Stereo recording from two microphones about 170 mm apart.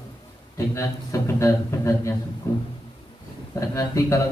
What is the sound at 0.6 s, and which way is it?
A man's voice, 15° left (ahead or behind).